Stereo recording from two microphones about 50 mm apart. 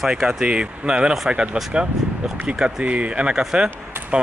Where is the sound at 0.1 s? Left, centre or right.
Centre.